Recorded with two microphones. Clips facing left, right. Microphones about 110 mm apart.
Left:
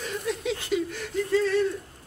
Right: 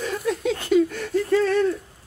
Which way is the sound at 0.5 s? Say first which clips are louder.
Right 9 dB; 50° right (ahead or behind).